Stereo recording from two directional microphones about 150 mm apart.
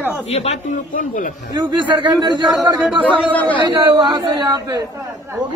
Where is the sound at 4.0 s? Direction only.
30° right (ahead or behind).